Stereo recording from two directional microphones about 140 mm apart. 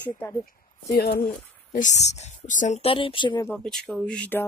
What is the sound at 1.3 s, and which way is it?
Speech, 65° left (ahead or behind).